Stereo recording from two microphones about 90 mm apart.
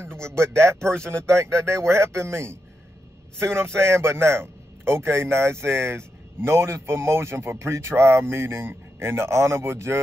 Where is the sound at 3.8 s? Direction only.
30° right (ahead or behind).